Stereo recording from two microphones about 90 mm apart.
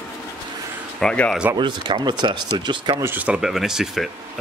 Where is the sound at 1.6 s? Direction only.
55° right (ahead or behind).